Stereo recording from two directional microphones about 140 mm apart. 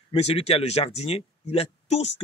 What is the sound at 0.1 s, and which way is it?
Speech, 45° left (ahead or behind).